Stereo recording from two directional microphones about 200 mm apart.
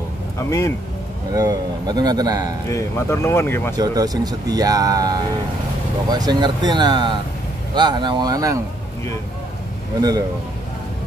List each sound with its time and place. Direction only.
0.5 s speech: 15° left (ahead or behind)
1.3 s speech: 15° right (ahead or behind)
2.7 s speech: 15° left (ahead or behind)
3.7 s speech: 20° right (ahead or behind)